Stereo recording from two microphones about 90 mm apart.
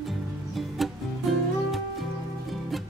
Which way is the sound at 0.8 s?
Centre (ahead or behind).